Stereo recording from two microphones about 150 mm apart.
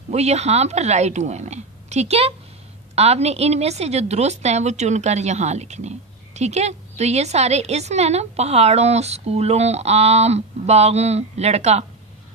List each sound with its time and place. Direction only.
0.1 s a woman's voice: 45° right (ahead or behind)